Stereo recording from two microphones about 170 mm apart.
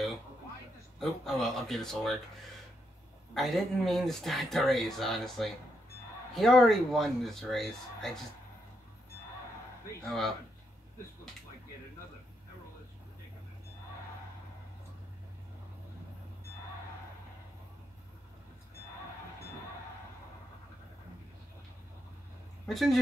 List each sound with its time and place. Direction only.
0.9 s speech: centre (ahead or behind)
3.3 s speech: centre (ahead or behind)
10.0 s speech: centre (ahead or behind)
22.7 s speech: centre (ahead or behind)